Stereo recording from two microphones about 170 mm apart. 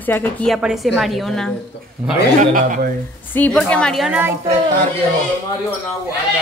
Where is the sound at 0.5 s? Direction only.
Centre (ahead or behind).